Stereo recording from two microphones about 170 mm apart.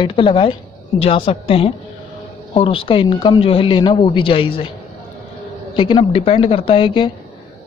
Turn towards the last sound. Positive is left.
turn(degrees=30)  # may be behind; listen again after turning